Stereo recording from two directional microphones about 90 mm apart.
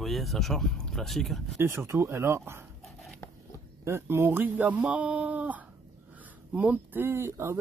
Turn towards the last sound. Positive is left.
turn(degrees=-30)  # may be behind; listen again after turning